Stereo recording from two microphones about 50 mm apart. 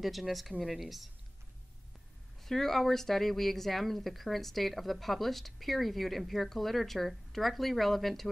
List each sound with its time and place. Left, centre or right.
0.0 s speech: centre
2.4 s speech: centre